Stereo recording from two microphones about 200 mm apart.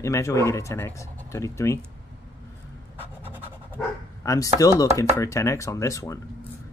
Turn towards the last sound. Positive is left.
turn(degrees=15)  # may be behind; listen again after turning